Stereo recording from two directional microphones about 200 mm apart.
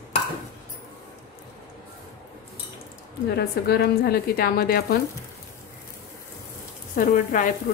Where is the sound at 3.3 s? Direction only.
55° left (ahead or behind).